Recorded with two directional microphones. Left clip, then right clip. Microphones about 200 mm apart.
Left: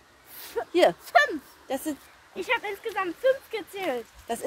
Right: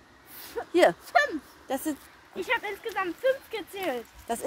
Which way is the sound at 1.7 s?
10° right (ahead or behind).